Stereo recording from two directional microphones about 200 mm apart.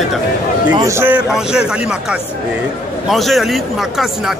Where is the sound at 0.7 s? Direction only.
15° right (ahead or behind).